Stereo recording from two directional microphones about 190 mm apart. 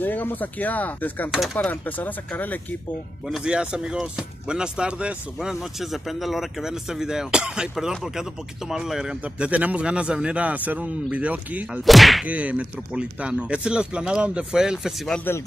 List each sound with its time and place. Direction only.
0.0 s speech: 10° left (ahead or behind)
3.3 s speech: 5° right (ahead or behind)